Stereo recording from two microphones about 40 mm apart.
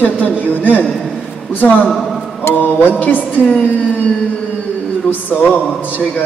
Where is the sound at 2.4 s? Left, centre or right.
Left.